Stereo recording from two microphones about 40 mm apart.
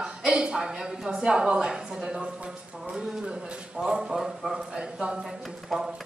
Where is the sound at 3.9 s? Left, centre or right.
Centre.